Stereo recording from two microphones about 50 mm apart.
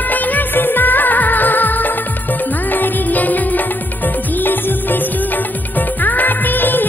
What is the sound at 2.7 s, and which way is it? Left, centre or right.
Music, left.